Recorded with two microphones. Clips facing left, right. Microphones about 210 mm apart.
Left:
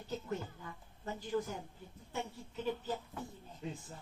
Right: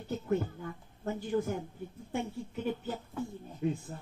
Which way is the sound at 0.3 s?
55° right (ahead or behind).